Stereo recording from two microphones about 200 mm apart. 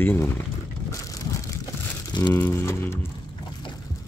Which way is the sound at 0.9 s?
15° left (ahead or behind).